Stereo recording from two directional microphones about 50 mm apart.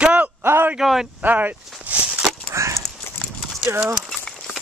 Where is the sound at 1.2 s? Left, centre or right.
Right.